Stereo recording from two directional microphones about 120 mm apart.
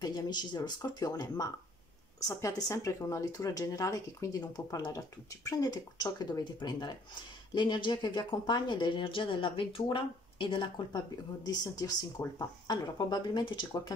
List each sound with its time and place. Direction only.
0.0 s speech: 35° left (ahead or behind)
11.4 s speech: 30° left (ahead or behind)